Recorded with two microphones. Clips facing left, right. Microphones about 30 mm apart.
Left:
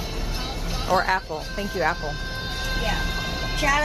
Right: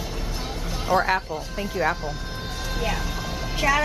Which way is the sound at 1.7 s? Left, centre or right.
Centre.